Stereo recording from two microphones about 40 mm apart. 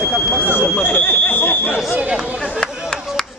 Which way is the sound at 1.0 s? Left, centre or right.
Left.